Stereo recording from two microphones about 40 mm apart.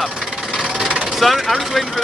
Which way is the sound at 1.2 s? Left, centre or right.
Centre.